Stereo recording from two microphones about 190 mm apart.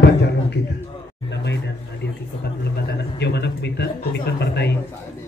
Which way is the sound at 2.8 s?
60° left (ahead or behind).